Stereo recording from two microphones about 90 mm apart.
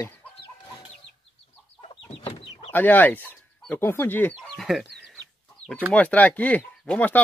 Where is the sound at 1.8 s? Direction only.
90° left.